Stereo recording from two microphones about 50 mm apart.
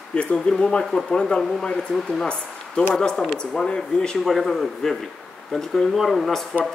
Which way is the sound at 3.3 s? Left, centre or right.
Centre.